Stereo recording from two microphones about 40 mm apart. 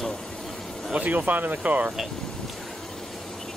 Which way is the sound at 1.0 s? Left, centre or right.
Right.